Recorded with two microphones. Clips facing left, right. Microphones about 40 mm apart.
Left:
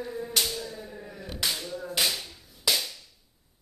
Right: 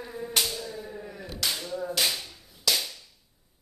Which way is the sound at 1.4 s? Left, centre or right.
Centre.